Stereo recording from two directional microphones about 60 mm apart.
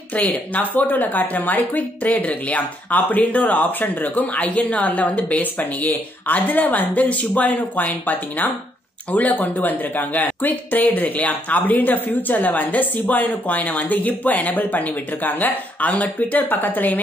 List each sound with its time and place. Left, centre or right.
0.1 s speech: left